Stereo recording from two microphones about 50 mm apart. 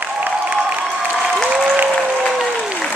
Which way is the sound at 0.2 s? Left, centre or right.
Right.